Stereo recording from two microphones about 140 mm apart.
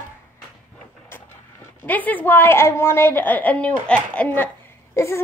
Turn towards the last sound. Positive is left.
turn(degrees=20)  # may be behind; listen again after turning